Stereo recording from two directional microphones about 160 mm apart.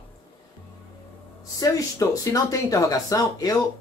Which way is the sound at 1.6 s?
20° left (ahead or behind).